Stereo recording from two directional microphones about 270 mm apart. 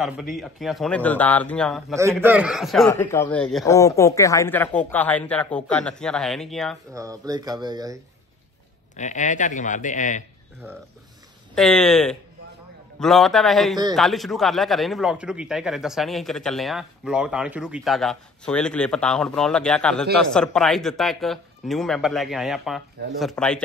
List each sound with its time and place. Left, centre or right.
0.0 s a man's voice: centre
6.9 s speech: centre
8.9 s speech: left
11.5 s a man's voice: centre